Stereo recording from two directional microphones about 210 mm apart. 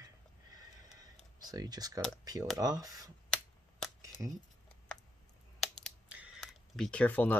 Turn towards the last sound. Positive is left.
turn(degrees=5)  # may be behind; listen again after turning